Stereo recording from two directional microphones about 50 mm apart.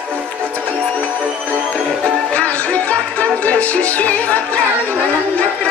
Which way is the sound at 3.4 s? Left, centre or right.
Left.